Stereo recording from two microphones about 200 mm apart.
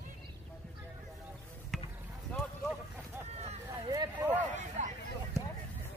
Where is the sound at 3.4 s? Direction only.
30° right (ahead or behind).